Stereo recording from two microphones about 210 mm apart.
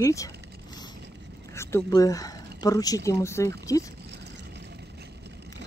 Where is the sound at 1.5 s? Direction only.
10° left (ahead or behind).